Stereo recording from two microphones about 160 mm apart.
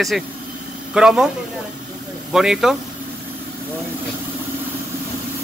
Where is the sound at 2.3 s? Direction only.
5° right (ahead or behind).